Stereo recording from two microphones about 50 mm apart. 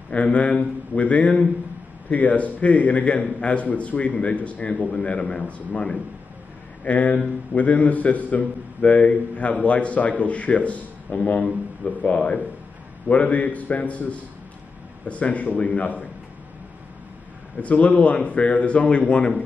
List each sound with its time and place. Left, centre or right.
0.1 s a man's voice: left
6.8 s a man's voice: left
17.6 s a man's voice: left